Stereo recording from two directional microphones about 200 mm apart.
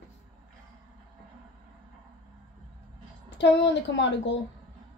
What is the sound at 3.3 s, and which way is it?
Speech, 60° left (ahead or behind).